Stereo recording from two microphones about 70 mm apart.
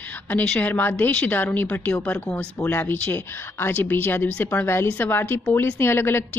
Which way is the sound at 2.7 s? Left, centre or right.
Left.